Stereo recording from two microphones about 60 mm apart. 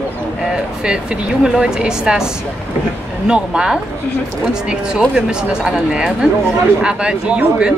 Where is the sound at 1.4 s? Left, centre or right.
Centre.